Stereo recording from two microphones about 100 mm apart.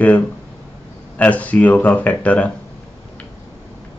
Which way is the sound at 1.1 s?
15° left (ahead or behind).